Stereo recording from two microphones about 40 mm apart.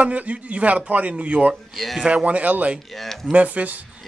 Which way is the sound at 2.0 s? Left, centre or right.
Right.